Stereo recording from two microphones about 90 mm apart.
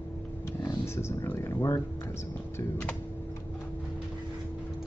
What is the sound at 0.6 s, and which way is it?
Speech, 30° left (ahead or behind).